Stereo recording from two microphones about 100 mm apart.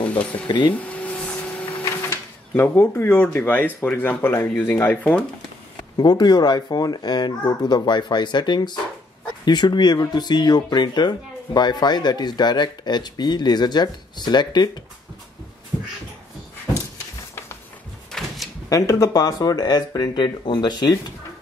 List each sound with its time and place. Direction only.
0.0 s speech: 15° left (ahead or behind)
0.5 s speech: 50° left (ahead or behind)
0.7 s a sound: 15° left (ahead or behind)
2.0 s speech: 25° left (ahead or behind)
5.9 s speech: 45° left (ahead or behind)
18.1 s drawer open or close: 5° left (ahead or behind)
18.7 s speech: 30° left (ahead or behind)